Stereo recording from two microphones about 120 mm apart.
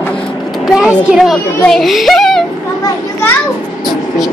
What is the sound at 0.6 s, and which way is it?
A child's voice, 5° right (ahead or behind).